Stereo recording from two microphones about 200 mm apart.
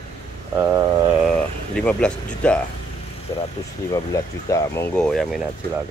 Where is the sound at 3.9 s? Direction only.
15° left (ahead or behind).